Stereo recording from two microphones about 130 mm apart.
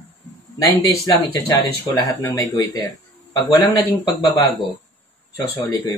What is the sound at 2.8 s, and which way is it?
Speech, 30° left (ahead or behind).